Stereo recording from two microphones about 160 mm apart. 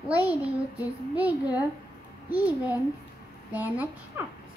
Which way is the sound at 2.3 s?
10° right (ahead or behind).